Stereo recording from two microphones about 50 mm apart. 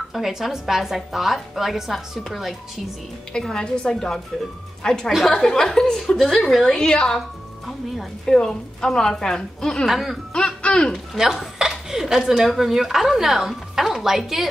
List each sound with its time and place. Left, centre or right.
0.1 s a woman's voice: centre
3.3 s a woman's voice: centre
8.3 s a woman's voice: centre
9.8 s a woman's voice: centre
10.3 s speech: centre
11.1 s a woman's voice: centre